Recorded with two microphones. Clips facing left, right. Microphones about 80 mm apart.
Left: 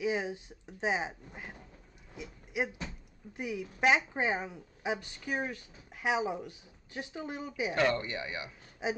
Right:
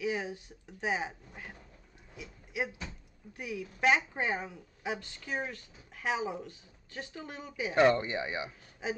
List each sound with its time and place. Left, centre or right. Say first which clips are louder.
0.0 s speech: left 2 dB; left
2.1 s a sound: left 2 dB; left
3.3 s a woman's voice: left 2 dB; centre
7.7 s speech: right 6 dB; right